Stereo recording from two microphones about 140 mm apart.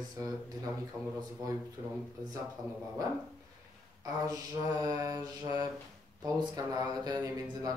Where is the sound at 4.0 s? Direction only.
25° right (ahead or behind).